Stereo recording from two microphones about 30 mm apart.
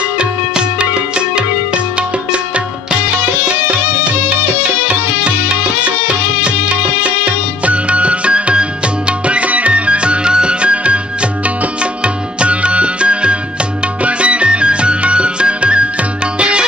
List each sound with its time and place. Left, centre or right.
0.2 s music: right
6.4 s music: right
9.3 s music: right